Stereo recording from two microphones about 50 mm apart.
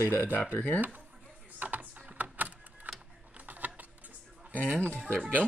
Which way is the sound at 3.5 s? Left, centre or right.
Right.